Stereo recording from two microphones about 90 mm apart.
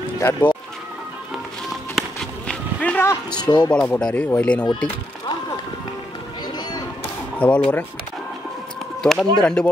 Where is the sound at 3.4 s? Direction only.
50° left (ahead or behind).